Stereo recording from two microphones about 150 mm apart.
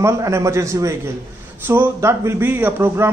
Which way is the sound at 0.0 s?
20° right (ahead or behind).